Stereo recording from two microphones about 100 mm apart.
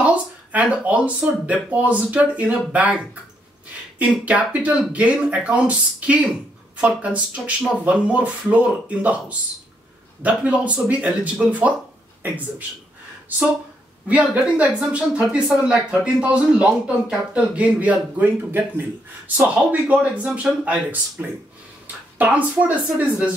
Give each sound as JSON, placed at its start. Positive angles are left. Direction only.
{"t": 0.0, "sound": "speech", "side_deg": -15}
{"t": 4.0, "sound": "speech", "side_deg": -15}
{"t": 10.2, "sound": "a man's voice", "side_deg": -15}
{"t": 14.0, "sound": "speech", "side_deg": -15}